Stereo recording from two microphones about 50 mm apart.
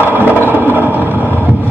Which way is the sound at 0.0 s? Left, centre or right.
Right.